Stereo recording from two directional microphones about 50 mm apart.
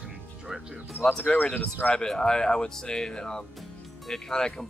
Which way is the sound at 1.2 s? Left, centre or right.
Left.